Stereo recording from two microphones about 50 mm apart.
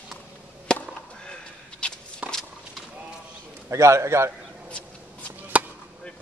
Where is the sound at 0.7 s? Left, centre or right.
Centre.